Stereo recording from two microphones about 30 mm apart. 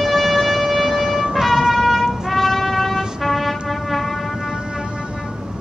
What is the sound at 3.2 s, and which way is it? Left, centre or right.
Music, centre.